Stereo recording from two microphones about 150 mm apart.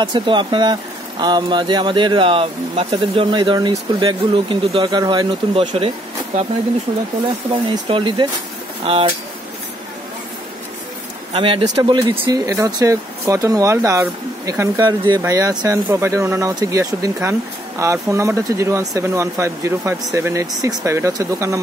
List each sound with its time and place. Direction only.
0.0 s speech: 30° right (ahead or behind)
7.7 s speech: 30° right (ahead or behind)
11.3 s speech: 35° right (ahead or behind); by 21.5 s 20° right (ahead or behind)